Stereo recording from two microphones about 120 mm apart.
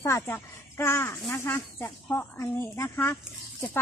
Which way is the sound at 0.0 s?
20° left (ahead or behind).